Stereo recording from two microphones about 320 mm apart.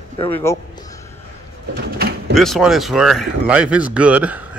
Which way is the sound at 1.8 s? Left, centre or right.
Right.